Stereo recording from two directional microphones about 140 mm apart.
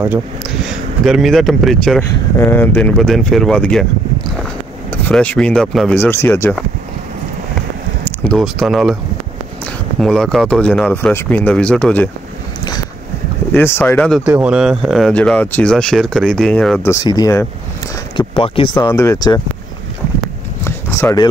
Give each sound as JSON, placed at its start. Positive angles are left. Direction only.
{"t": 0.7, "sound": "speech", "side_deg": 0}
{"t": 2.0, "sound": "speech", "side_deg": 15}
{"t": 5.0, "sound": "speech", "side_deg": 10}
{"t": 5.9, "sound": "speech", "side_deg": 15}
{"t": 8.0, "sound": "a sound", "side_deg": 10}
{"t": 8.4, "sound": "speech", "side_deg": 0}
{"t": 9.9, "sound": "speech", "side_deg": 5}
{"t": 13.5, "sound": "speech", "side_deg": 15}
{"t": 14.2, "sound": "speech", "side_deg": -10}
{"t": 16.8, "sound": "speech", "side_deg": 25}
{"t": 18.1, "sound": "speech", "side_deg": 40}
{"t": 18.9, "sound": "speech", "side_deg": 20}
{"t": 20.6, "sound": "a sound", "side_deg": 20}